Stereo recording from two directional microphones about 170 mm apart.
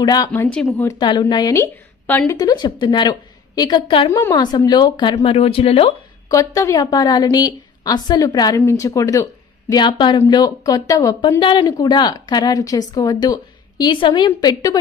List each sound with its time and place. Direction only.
0.0 s a woman's voice: 25° left (ahead or behind)
0.3 s speech: 10° left (ahead or behind)
0.9 s a woman's voice: 25° left (ahead or behind)
6.2 s a woman's voice: 20° left (ahead or behind)